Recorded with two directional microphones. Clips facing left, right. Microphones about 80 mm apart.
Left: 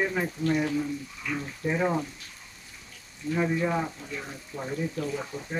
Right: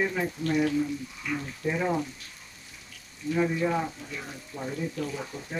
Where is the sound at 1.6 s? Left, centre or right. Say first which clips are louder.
Left 1 dB; centre.